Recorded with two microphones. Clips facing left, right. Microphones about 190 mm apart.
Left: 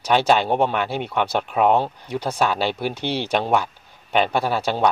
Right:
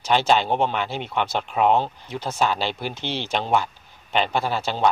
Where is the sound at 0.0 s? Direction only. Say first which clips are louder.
Left 2 dB; 55° left (ahead or behind).